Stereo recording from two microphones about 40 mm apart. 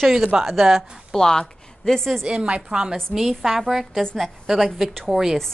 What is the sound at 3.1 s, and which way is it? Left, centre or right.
Speech, centre.